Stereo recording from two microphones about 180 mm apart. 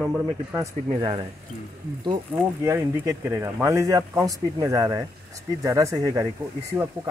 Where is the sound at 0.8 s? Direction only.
30° right (ahead or behind).